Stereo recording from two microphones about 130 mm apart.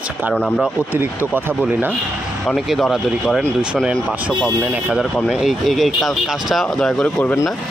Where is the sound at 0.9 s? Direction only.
15° right (ahead or behind); by 3.8 s 10° left (ahead or behind).